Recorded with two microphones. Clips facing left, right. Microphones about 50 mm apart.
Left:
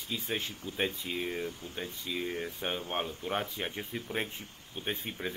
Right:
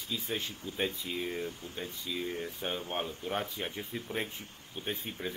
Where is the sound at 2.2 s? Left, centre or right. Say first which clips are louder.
Left 1 dB; left.